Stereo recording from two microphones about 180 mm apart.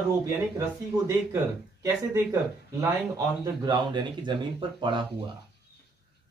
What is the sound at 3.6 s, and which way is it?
Speech, 25° right (ahead or behind).